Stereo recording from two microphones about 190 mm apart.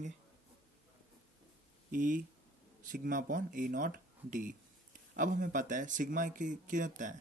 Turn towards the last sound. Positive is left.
turn(degrees=-45)  # may be behind; listen again after turning